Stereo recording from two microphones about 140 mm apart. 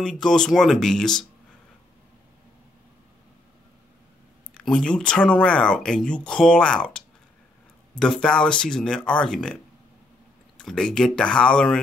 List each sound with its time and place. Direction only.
0.0 s speech: 5° left (ahead or behind)
4.6 s speech: 5° left (ahead or behind)
10.6 s speech: 5° left (ahead or behind)